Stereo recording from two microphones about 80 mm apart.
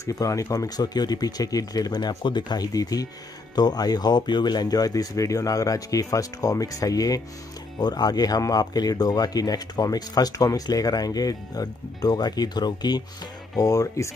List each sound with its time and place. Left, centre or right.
0.0 s speech: left
13.6 s speech: left